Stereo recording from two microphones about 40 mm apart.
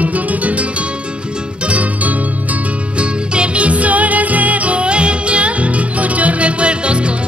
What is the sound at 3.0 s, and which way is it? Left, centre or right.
Music, right.